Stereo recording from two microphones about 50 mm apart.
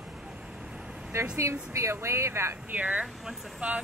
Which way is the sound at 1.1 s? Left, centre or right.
Right.